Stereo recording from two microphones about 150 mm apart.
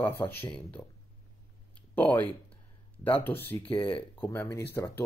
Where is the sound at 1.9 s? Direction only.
10° left (ahead or behind).